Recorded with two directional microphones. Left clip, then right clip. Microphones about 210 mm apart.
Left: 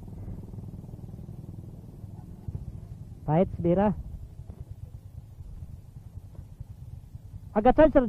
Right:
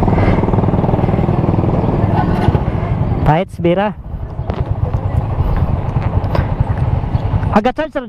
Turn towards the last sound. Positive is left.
turn(degrees=-10)  # may be behind; listen again after turning